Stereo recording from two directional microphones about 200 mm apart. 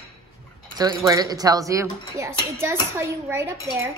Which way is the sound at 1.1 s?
20° right (ahead or behind).